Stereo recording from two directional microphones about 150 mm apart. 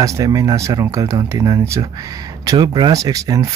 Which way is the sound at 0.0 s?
20° right (ahead or behind).